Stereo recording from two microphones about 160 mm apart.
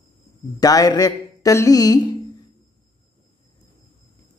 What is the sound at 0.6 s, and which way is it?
Mantra, 25° left (ahead or behind).